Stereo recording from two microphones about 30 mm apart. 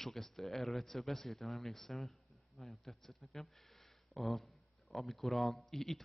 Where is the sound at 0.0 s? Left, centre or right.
Centre.